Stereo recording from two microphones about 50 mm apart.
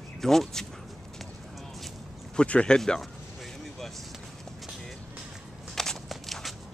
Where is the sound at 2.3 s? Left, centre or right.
Left.